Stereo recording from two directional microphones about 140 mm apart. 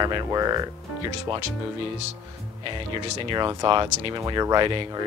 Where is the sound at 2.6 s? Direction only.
35° right (ahead or behind).